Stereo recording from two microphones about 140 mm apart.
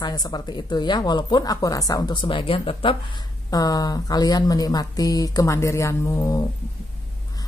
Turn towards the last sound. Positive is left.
turn(degrees=20)  # may be behind; listen again after turning